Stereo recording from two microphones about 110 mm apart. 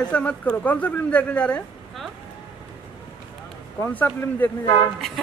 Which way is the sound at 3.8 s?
20° left (ahead or behind).